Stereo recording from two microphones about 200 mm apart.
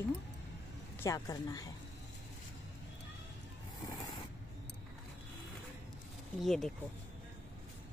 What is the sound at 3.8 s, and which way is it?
Vehicle, 20° left (ahead or behind).